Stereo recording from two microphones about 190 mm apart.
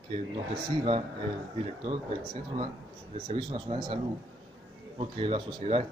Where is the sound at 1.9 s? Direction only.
30° right (ahead or behind).